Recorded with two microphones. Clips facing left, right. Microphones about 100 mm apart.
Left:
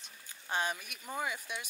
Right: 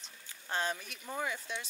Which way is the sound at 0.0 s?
15° left (ahead or behind).